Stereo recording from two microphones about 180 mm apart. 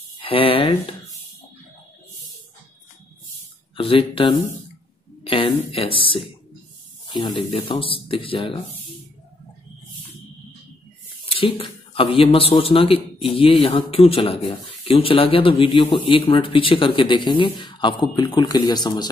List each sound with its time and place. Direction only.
0.2 s a sound: 30° left (ahead or behind)
3.7 s a man's voice: 30° left (ahead or behind)
7.5 s a man's voice: 30° left (ahead or behind)
11.2 s a man's voice: 30° left (ahead or behind)